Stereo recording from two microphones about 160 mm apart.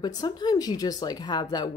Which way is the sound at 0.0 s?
25° left (ahead or behind).